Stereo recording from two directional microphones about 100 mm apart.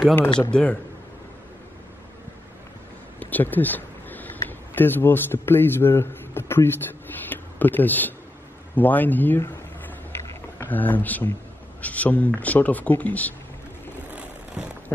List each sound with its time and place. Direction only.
0.5 s speech: 10° left (ahead or behind)
3.2 s a sound: 15° left (ahead or behind)
4.5 s a man's voice: 20° left (ahead or behind)
10.6 s speech: 20° left (ahead or behind)